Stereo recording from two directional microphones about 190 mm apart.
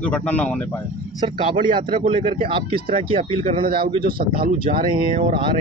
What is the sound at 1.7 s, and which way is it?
Speech, 25° right (ahead or behind).